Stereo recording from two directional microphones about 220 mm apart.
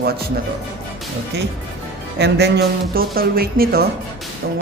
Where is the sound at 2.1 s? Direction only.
50° right (ahead or behind).